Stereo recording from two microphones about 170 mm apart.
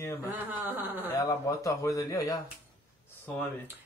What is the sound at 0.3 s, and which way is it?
Speech, 10° right (ahead or behind).